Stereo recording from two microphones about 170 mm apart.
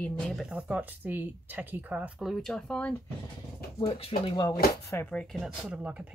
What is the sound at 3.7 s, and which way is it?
Speech, 35° left (ahead or behind).